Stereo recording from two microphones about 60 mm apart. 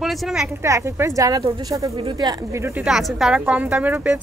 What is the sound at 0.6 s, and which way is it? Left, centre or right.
Speech, right.